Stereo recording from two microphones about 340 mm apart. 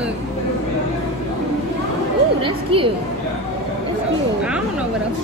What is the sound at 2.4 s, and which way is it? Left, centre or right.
Speech, centre.